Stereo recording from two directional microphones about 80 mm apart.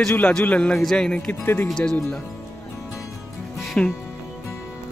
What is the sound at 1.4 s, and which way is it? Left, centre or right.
Speech, left.